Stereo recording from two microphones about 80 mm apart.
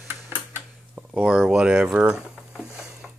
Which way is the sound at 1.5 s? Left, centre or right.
Centre.